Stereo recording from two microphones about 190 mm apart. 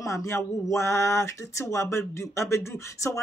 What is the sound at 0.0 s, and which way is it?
Speech, 15° left (ahead or behind).